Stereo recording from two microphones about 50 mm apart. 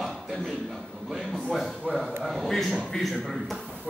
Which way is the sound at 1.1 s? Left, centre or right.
Centre.